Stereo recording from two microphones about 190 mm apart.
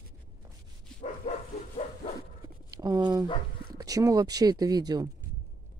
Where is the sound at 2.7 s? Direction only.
20° right (ahead or behind).